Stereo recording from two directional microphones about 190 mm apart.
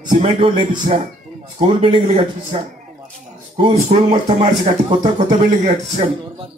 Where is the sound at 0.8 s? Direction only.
40° right (ahead or behind).